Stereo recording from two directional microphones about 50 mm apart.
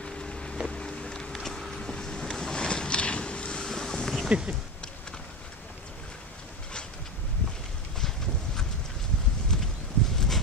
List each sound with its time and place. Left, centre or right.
0.0 s boat: centre
0.7 s vehicle: centre
1.3 s a sound: centre
1.8 s boat: centre
4.3 s speech: right
9.5 s a sound: centre